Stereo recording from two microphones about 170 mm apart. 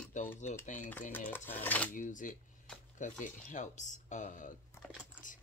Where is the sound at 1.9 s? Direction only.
50° left (ahead or behind).